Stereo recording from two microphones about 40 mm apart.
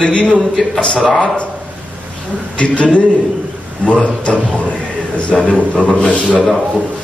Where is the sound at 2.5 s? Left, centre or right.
Left.